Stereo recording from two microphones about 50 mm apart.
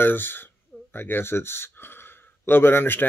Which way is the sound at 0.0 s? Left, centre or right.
Left.